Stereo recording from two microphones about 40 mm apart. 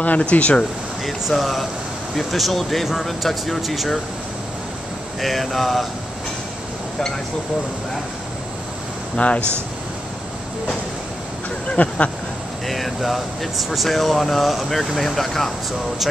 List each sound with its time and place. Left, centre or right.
0.2 s speech: left
1.3 s speech: centre
5.2 s speech: centre
9.1 s a man's voice: left
11.7 s speech: left
12.6 s speech: centre